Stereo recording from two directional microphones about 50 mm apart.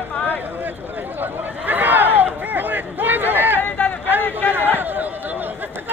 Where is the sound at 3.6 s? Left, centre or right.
Left.